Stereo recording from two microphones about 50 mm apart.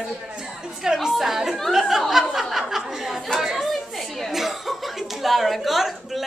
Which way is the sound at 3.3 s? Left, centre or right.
Centre.